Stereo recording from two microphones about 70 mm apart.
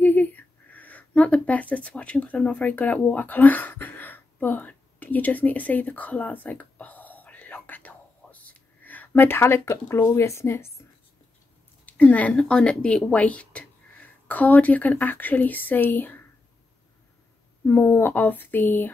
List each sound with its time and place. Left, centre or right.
0.0 s a sound: left
11.8 s speech: left
17.6 s speech: left